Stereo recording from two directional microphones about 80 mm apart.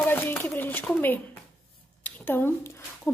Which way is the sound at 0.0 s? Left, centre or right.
Left.